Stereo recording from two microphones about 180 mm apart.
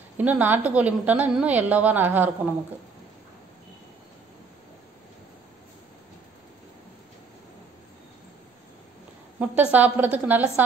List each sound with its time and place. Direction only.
0.2 s a woman's voice: 10° right (ahead or behind)
9.4 s a woman's voice: 5° right (ahead or behind)